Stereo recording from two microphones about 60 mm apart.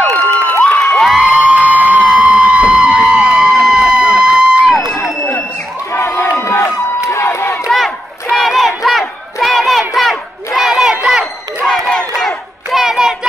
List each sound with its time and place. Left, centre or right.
0.5 s crowd: left
0.8 s crowd: centre
1.2 s music: centre
1.7 s a sound: right
2.1 s a sound: centre
5.9 s crowd: left
7.7 s crowd: centre
11.6 s crowd: centre
12.7 s a sound: centre